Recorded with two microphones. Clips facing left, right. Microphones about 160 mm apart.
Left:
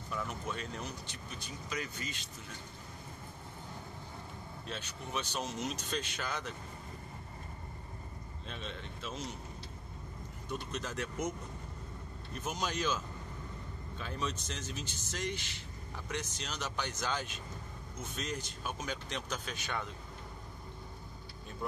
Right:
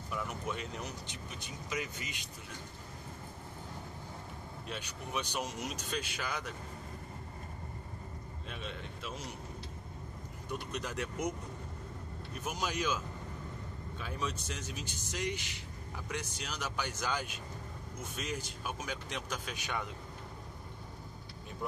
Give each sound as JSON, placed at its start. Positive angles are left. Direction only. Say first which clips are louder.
{"t": 0.1, "sound": "speech", "louder": "right 1 dB", "side_deg": -15}
{"t": 4.6, "sound": "speech", "louder": "even", "side_deg": -10}
{"t": 8.5, "sound": "speech", "louder": "even", "side_deg": -10}
{"t": 10.5, "sound": "speech", "louder": "even", "side_deg": -15}
{"t": 12.4, "sound": "speech", "louder": "even", "side_deg": -10}